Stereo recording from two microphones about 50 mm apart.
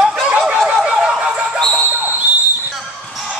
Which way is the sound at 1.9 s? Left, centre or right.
Right.